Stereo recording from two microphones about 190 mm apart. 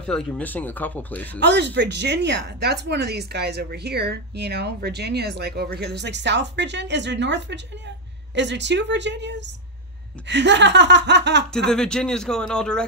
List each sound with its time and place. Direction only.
0.0 s speech: 5° left (ahead or behind)
1.4 s speech: 65° right (ahead or behind)
11.7 s a man's voice: 5° left (ahead or behind)